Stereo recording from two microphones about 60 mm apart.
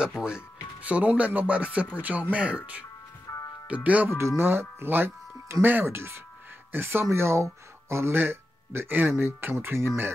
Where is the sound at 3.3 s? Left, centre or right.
Left.